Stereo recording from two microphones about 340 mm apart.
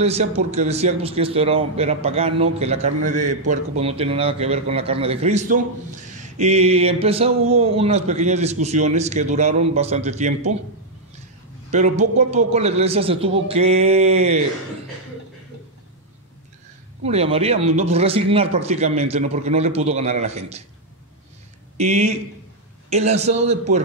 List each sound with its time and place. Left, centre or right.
0.0 s a man's voice: centre
6.1 s a sound: right
7.5 s speech: centre
11.7 s a man's voice: centre
17.0 s speech: centre
21.7 s speech: centre